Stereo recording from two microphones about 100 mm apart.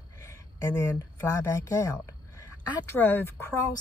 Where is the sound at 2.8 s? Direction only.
20° left (ahead or behind).